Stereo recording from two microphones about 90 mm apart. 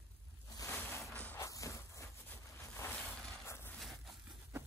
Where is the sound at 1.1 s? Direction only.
15° left (ahead or behind).